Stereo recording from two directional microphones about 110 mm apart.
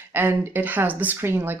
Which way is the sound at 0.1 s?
20° right (ahead or behind).